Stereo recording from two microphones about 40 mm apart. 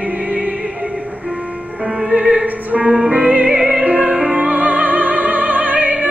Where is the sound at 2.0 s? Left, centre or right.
Centre.